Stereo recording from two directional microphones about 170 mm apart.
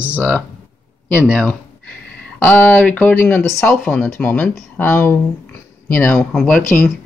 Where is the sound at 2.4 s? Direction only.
10° left (ahead or behind).